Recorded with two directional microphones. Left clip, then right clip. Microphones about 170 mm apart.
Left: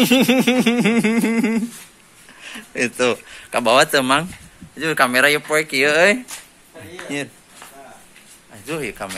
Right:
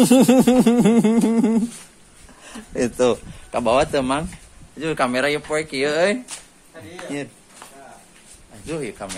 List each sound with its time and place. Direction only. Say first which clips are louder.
0.0 s a sound: right 1 dB; 40° right (ahead or behind); by 1.6 s 20° right (ahead or behind)
2.4 s speech: left 2 dB; 35° right (ahead or behind)
3.5 s speech: left 4 dB; 5° right (ahead or behind)
5.2 s speech: left 5 dB; 10° left (ahead or behind)
8.6 s speech: left 2 dB; centre (ahead or behind)